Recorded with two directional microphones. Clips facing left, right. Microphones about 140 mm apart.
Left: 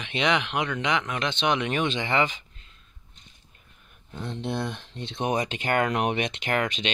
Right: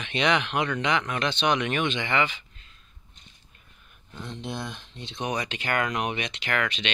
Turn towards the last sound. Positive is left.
turn(degrees=45)  # may be behind; listen again after turning